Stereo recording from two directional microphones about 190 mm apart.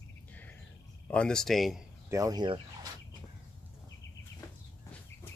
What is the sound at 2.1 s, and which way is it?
Speech, 20° right (ahead or behind).